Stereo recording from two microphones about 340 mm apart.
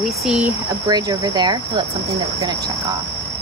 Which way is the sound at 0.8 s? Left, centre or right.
Centre.